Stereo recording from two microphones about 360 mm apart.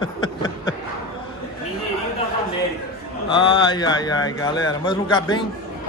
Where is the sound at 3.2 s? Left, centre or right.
Centre.